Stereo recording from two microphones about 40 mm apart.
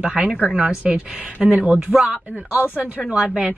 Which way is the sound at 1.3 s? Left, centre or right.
Right.